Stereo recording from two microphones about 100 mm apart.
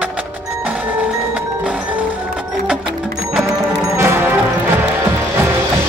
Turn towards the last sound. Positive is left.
turn(degrees=-20)  # may be behind; listen again after turning